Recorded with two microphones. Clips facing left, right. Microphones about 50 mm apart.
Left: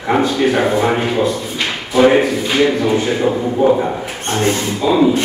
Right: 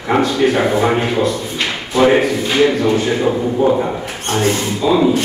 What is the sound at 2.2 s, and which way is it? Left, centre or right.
Speech, centre.